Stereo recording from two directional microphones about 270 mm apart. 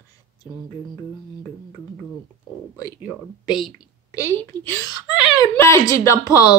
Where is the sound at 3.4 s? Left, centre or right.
Centre.